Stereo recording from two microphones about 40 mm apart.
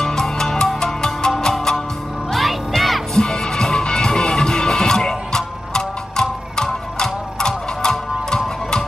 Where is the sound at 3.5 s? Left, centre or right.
Centre.